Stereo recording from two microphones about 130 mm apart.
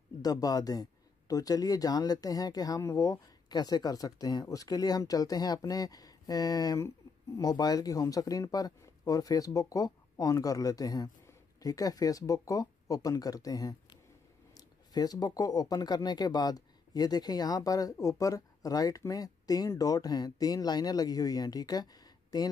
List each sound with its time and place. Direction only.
0.2 s speech: 30° left (ahead or behind)